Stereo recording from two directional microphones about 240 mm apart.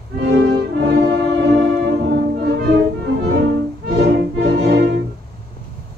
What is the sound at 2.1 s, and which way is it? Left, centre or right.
Music, right.